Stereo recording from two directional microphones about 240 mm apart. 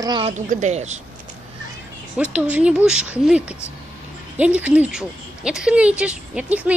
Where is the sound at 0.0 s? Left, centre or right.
Centre.